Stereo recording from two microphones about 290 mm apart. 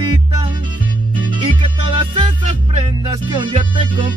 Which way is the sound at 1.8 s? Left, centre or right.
Centre.